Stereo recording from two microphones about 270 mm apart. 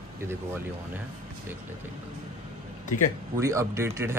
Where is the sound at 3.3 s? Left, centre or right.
Centre.